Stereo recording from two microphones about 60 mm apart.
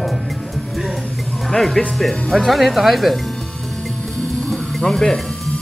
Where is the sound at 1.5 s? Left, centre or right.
Centre.